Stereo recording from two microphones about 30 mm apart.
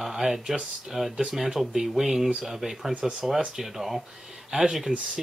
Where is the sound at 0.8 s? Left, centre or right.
Centre.